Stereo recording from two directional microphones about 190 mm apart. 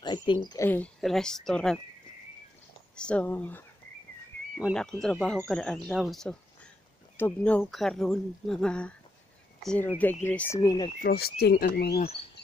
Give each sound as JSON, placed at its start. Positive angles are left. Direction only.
{"t": 0.0, "sound": "speech", "side_deg": 25}
{"t": 0.5, "sound": "speech", "side_deg": 10}
{"t": 3.0, "sound": "speech", "side_deg": 5}
{"t": 11.0, "sound": "speech", "side_deg": 55}